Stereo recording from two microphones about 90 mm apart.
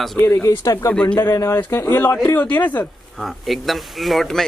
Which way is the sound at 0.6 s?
45° left (ahead or behind).